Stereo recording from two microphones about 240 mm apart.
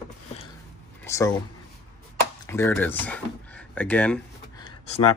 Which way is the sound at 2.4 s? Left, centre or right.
Centre.